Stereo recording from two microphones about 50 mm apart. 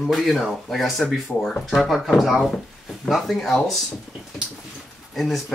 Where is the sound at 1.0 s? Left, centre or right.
Left.